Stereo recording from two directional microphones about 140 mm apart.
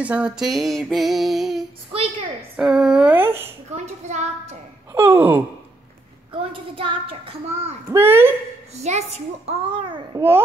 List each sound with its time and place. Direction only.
0.0 s a sound: 10° right (ahead or behind)
2.5 s speech: 5° right (ahead or behind)
3.7 s a child's voice: 55° right (ahead or behind)
4.9 s speech: 15° right (ahead or behind)
6.5 s a child's voice: 40° right (ahead or behind)
7.9 s speech: 15° right (ahead or behind)
8.7 s a child's voice: 50° right (ahead or behind)
9.5 s a child's voice: 35° right (ahead or behind)
10.1 s speech: 15° right (ahead or behind)